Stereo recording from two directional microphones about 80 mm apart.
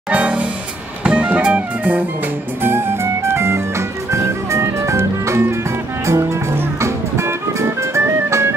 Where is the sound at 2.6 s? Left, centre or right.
Right.